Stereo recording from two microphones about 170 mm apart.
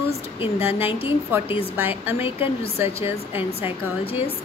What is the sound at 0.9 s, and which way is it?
A woman's voice, 30° left (ahead or behind).